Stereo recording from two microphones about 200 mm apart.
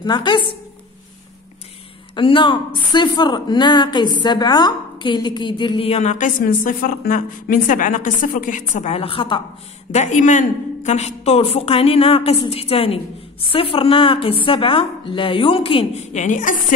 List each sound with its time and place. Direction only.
0.0 s a woman's voice: 20° left (ahead or behind)
2.1 s a woman's voice: 25° left (ahead or behind)